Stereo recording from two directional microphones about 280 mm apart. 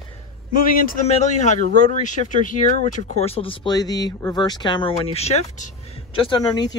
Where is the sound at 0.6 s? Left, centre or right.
Left.